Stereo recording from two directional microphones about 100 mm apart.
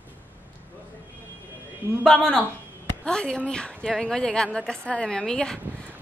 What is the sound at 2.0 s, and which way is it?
A woman's voice, 10° left (ahead or behind).